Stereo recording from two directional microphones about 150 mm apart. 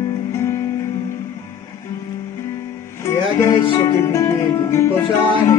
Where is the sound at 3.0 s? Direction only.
15° left (ahead or behind).